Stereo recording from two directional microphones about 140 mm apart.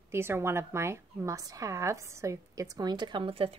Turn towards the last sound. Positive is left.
turn(degrees=-40)  # may be behind; listen again after turning